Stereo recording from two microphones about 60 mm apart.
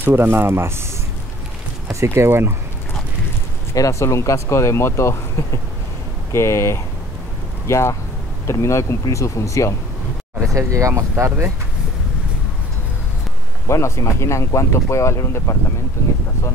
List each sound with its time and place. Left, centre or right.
0.0 s speech: right
1.9 s speech: right
3.7 s speech: left
6.3 s speech: left
10.5 s speech: right
13.7 s speech: left